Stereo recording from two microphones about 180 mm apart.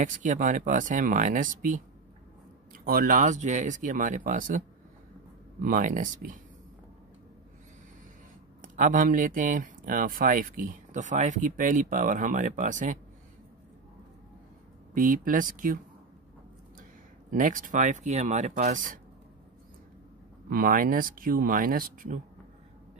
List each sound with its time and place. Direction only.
0.0 s speech: 45° right (ahead or behind)
8.7 s speech: 45° right (ahead or behind)
15.0 s speech: 50° right (ahead or behind)
17.3 s speech: 45° right (ahead or behind)
20.4 s speech: 50° right (ahead or behind)